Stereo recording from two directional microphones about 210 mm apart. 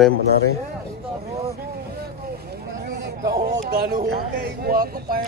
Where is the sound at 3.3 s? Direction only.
45° right (ahead or behind).